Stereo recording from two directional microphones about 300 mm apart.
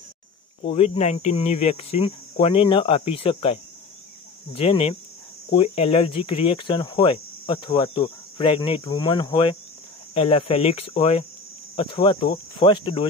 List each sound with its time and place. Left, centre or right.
0.6 s speech: left
4.6 s speech: centre